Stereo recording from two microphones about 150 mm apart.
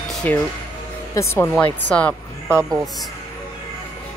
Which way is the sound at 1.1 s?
20° left (ahead or behind).